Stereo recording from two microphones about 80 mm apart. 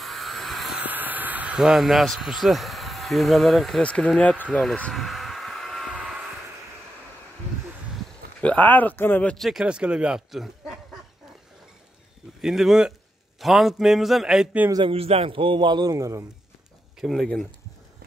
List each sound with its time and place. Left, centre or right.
0.0 s vehicle: centre
0.7 s a sound: right
1.6 s speech: centre
3.8 s speech: centre
4.9 s a sound: centre
8.4 s speech: centre
9.4 s speech: centre
12.4 s speech: centre
15.3 s a man's voice: right
15.9 s speech: right
17.0 s speech: centre